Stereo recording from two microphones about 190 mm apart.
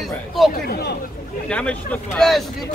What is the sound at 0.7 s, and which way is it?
Speech, 60° left (ahead or behind).